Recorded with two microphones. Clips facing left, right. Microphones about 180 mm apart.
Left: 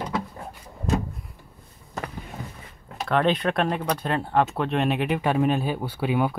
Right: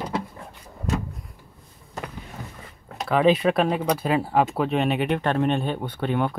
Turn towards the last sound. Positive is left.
turn(degrees=5)  # may be behind; listen again after turning